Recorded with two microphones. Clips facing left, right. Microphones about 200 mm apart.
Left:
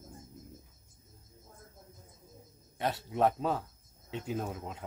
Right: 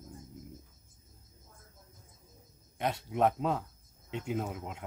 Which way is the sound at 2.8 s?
Centre (ahead or behind).